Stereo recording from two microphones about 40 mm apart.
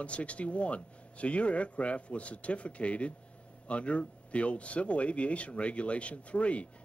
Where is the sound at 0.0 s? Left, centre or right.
Left.